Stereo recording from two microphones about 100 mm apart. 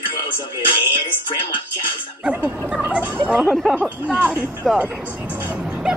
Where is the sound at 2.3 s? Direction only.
10° right (ahead or behind).